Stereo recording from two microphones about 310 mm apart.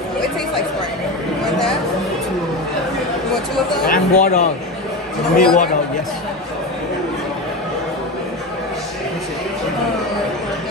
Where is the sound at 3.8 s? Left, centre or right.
Left.